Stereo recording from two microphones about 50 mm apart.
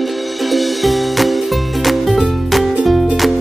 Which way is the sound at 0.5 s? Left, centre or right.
Centre.